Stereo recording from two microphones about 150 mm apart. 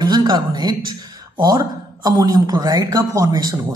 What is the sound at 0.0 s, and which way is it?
A woman's voice, 30° right (ahead or behind).